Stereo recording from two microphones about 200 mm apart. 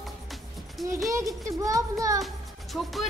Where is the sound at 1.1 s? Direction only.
15° right (ahead or behind).